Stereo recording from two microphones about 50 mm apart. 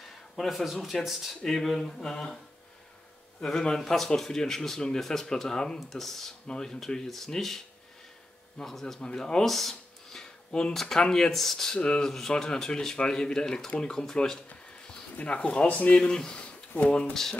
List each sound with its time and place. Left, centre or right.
0.0 s a sound: centre
0.8 s a man's voice: centre
3.4 s a man's voice: centre
6.4 s speech: centre
15.1 s speech: left
16.4 s a sound: left
16.9 s speech: centre